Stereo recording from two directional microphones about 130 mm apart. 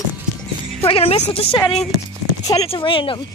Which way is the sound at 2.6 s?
45° left (ahead or behind).